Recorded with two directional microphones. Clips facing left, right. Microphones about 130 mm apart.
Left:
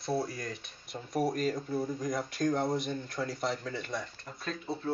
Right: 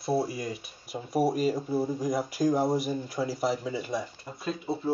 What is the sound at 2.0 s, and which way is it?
Speech, 5° right (ahead or behind).